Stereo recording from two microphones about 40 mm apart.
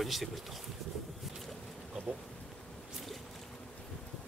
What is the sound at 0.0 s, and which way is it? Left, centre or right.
Speech, centre.